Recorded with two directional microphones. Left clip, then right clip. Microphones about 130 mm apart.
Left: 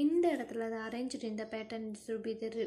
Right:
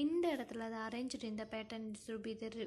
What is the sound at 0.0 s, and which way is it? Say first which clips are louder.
A woman's voice: left 6 dB; 35° right (ahead or behind).